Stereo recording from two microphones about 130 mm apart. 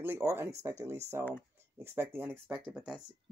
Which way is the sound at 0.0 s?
20° right (ahead or behind).